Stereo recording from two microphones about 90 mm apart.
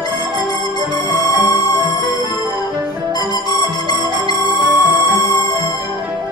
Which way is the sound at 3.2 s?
50° left (ahead or behind).